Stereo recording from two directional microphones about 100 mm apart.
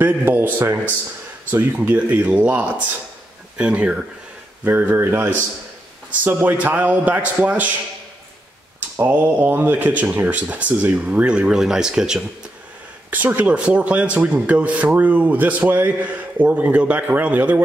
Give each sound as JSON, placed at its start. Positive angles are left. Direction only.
{"t": 0.0, "sound": "a man's voice", "side_deg": -20}
{"t": 8.9, "sound": "speech", "side_deg": -20}